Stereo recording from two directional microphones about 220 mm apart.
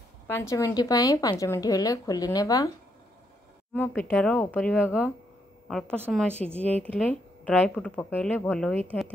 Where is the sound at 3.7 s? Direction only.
10° left (ahead or behind); by 6.2 s 10° right (ahead or behind).